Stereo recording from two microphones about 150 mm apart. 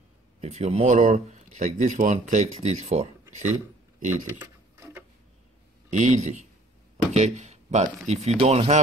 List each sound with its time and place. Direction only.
0.4 s speech: 45° right (ahead or behind)
4.4 s a sound: 15° right (ahead or behind)
5.9 s speech: 55° right (ahead or behind)